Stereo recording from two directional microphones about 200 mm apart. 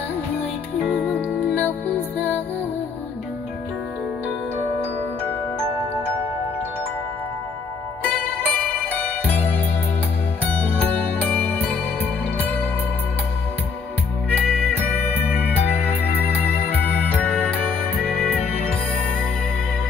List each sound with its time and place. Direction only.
0.8 s music: 10° left (ahead or behind)
8.0 s music: 10° left (ahead or behind)
14.3 s music: 10° left (ahead or behind)
15.2 s music: 10° right (ahead or behind)
16.4 s music: 10° left (ahead or behind)